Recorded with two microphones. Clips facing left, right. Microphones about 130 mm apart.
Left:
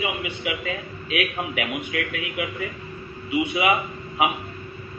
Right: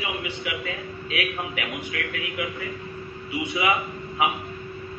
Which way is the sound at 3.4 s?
20° left (ahead or behind).